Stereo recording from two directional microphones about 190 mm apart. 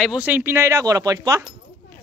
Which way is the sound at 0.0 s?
5° right (ahead or behind).